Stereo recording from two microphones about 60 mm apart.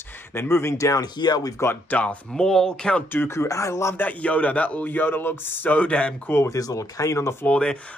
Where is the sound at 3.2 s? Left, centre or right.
Left.